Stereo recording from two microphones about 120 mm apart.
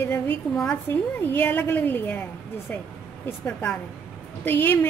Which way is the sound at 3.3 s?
15° left (ahead or behind).